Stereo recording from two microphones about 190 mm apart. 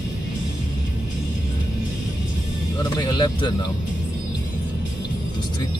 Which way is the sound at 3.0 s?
25° left (ahead or behind).